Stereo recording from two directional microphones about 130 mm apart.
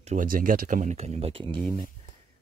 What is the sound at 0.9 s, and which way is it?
Speech, 55° right (ahead or behind).